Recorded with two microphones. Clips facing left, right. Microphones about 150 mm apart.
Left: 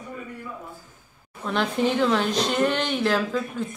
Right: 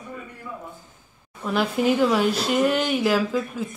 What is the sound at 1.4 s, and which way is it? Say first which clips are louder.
A woman's voice: right 1 dB; 5° right (ahead or behind).